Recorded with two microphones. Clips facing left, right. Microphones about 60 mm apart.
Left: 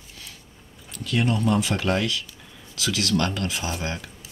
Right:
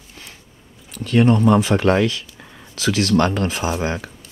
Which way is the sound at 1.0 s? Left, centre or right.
Right.